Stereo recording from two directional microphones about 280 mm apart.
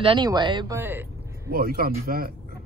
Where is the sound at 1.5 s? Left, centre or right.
Right.